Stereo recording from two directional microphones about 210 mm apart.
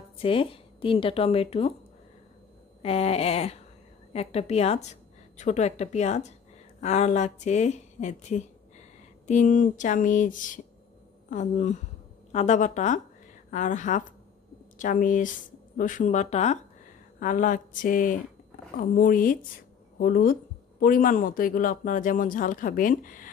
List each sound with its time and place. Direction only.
0.2 s a woman's voice: 25° left (ahead or behind)
2.8 s a woman's voice: 30° left (ahead or behind)